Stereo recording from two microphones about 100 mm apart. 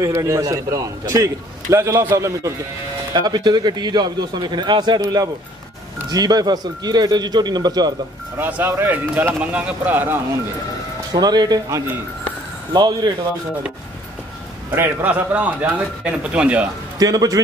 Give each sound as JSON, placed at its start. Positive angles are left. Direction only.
{"t": 0.0, "sound": "a man's voice", "side_deg": -35}
{"t": 3.1, "sound": "a man's voice", "side_deg": -45}
{"t": 8.4, "sound": "speech", "side_deg": -20}
{"t": 11.1, "sound": "a man's voice", "side_deg": -40}
{"t": 14.7, "sound": "speech", "side_deg": -25}
{"t": 17.0, "sound": "a man's voice", "side_deg": -40}